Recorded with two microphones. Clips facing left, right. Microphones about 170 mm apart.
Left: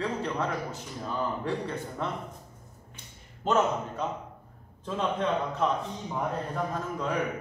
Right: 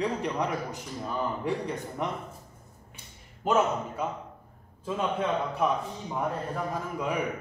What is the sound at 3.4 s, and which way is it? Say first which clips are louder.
A man's voice: even; 10° right (ahead or behind).